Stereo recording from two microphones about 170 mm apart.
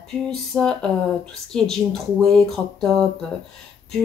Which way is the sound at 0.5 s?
Centre (ahead or behind).